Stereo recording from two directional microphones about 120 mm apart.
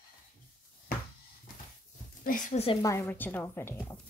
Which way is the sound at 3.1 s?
15° left (ahead or behind).